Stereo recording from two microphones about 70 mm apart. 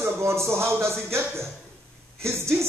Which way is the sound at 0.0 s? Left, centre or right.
Right.